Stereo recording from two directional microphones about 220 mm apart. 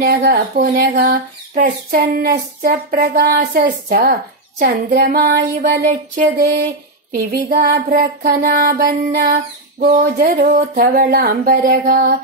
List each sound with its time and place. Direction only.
0.0 s a woman's voice: 45° right (ahead or behind)